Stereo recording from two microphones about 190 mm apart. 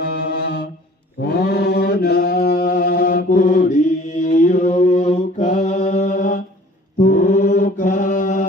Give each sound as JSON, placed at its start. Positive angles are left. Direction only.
{"t": 0.0, "sound": "music", "side_deg": 55}
{"t": 1.2, "sound": "mantra", "side_deg": 60}